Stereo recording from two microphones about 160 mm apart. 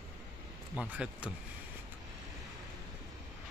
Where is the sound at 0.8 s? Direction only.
5° right (ahead or behind).